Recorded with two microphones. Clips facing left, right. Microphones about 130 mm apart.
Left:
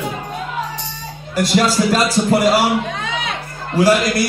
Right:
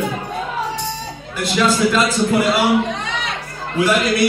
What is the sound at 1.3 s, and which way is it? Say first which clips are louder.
A man's voice: left 2 dB; 40° left (ahead or behind).